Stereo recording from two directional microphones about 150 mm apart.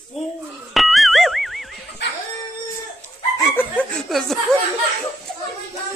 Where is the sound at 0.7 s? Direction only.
Centre (ahead or behind).